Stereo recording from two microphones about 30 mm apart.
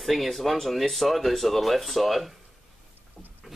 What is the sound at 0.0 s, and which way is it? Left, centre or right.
Speech, centre.